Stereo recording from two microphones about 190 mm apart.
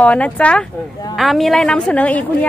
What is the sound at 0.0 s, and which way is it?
Speech, 5° left (ahead or behind).